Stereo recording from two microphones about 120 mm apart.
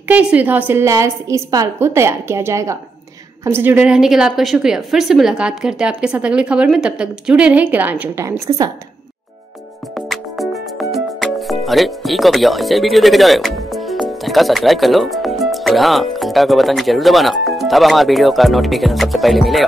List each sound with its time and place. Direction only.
0.1 s a woman's voice: 10° right (ahead or behind); by 8.7 s 25° right (ahead or behind)
9.9 s music: centre (ahead or behind)